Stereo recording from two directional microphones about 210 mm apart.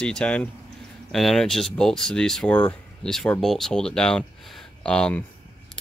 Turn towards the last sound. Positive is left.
turn(degrees=5)  # may be behind; listen again after turning